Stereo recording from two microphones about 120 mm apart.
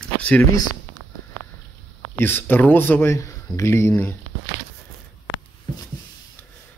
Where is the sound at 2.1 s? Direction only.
20° left (ahead or behind).